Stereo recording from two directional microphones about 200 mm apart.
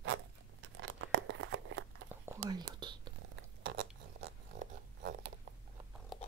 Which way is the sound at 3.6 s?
50° right (ahead or behind).